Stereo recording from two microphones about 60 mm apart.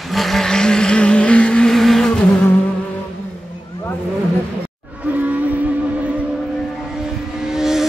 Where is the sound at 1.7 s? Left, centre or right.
Centre.